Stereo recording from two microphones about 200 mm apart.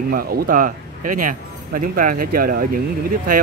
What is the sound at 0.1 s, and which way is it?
Speech, 45° right (ahead or behind).